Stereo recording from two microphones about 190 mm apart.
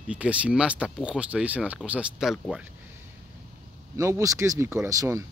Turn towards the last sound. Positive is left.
turn(degrees=-15)  # may be behind; listen again after turning